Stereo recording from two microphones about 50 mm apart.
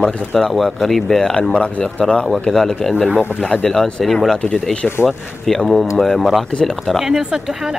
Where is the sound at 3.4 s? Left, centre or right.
Centre.